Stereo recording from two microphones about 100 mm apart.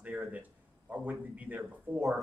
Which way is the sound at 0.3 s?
15° right (ahead or behind).